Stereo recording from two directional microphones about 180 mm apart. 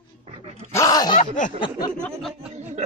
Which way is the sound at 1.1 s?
45° left (ahead or behind).